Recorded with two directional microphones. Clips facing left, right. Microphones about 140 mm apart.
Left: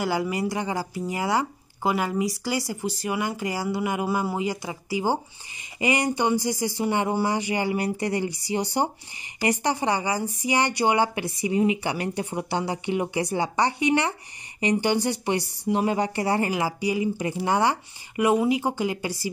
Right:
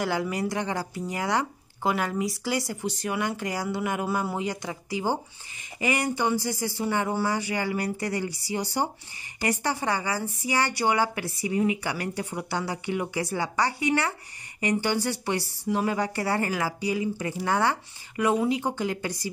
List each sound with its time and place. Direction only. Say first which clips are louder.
0.0 s a woman's voice: left 2 dB; 5° left (ahead or behind)